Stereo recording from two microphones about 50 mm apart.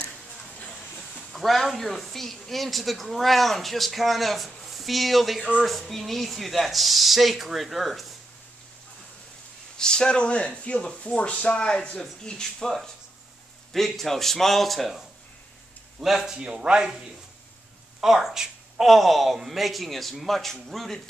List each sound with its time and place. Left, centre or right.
0.6 s vehicle: left
1.3 s speech: centre
9.8 s speech: centre
16.3 s a man's voice: centre
18.0 s speech: centre